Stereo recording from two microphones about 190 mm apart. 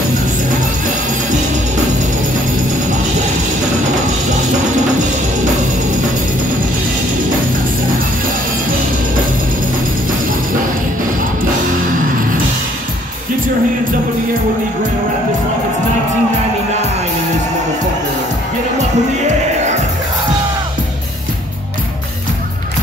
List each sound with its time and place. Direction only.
18.8 s music: 35° right (ahead or behind)